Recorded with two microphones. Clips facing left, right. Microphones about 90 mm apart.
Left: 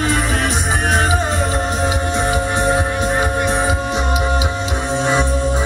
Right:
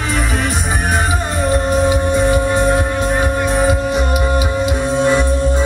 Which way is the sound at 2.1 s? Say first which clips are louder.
Right 4 dB; 20° left (ahead or behind).